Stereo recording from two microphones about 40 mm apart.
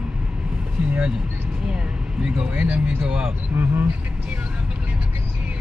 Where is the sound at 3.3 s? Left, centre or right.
Right.